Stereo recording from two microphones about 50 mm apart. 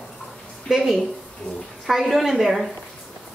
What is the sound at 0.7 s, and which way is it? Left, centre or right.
A woman's voice, centre.